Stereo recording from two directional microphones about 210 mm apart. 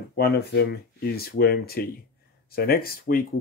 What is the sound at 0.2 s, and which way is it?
Speech, 50° left (ahead or behind).